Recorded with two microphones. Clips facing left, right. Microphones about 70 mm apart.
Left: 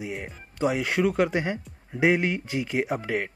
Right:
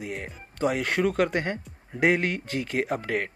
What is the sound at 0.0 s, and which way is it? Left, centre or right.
Speech, centre.